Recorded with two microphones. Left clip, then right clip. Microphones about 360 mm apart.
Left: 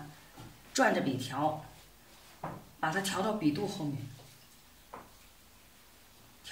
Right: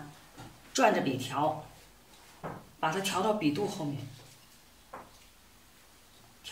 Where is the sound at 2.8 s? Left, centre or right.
Centre.